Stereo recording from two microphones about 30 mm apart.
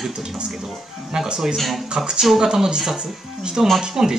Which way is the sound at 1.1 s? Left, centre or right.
Right.